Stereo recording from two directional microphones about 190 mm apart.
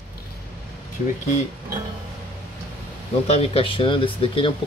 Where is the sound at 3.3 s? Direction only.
30° left (ahead or behind).